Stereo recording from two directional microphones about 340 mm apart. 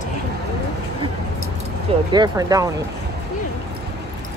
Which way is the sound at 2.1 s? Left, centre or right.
Centre.